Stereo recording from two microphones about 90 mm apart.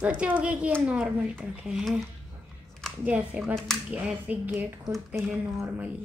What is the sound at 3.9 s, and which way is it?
A woman's voice, 15° right (ahead or behind).